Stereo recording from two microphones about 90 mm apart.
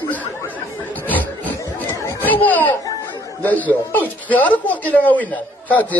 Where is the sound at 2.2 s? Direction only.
20° left (ahead or behind).